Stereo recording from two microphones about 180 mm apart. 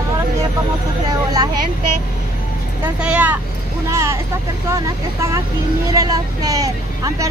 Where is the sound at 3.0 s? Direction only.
5° right (ahead or behind).